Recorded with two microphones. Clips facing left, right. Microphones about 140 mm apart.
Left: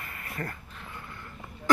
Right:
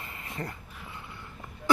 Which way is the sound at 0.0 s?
20° right (ahead or behind).